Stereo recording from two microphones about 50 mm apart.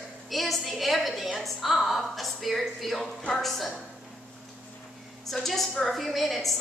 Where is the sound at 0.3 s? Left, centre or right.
Centre.